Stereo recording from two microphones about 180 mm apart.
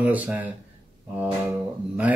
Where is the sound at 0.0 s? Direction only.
10° right (ahead or behind).